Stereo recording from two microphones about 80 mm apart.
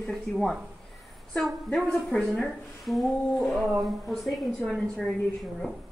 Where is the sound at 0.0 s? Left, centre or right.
Centre.